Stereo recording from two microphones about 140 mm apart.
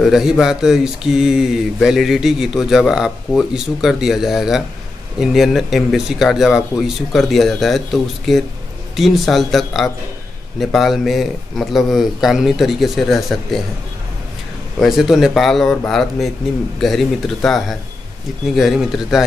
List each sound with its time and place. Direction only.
0.0 s speech: 5° right (ahead or behind)
14.8 s speech: centre (ahead or behind)